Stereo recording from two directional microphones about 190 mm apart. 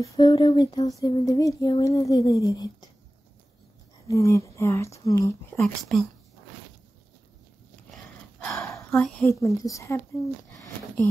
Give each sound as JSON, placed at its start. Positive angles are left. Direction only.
{"t": 0.0, "sound": "speech", "side_deg": 20}
{"t": 4.1, "sound": "speech", "side_deg": 15}
{"t": 5.6, "sound": "speech", "side_deg": 0}
{"t": 8.5, "sound": "a sound", "side_deg": 15}
{"t": 9.0, "sound": "speech", "side_deg": 10}
{"t": 10.5, "sound": "a sound", "side_deg": 15}